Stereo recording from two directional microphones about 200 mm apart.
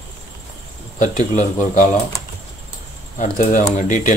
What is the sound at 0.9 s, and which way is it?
Speech, 40° left (ahead or behind).